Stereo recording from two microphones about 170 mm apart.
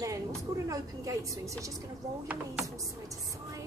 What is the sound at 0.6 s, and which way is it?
A woman's voice, 20° right (ahead or behind).